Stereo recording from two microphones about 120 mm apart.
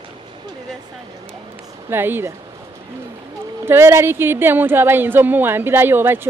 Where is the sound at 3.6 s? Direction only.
20° right (ahead or behind).